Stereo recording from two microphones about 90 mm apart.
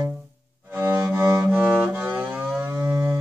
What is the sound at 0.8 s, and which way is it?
Cello, 25° right (ahead or behind).